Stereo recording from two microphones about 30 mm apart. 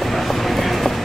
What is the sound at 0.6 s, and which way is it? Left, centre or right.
Vehicle, centre.